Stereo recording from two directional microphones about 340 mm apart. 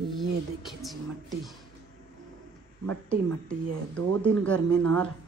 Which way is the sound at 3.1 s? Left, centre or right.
Centre.